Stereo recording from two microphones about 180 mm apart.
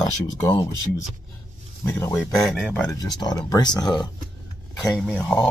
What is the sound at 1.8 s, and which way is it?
Speech, 10° left (ahead or behind).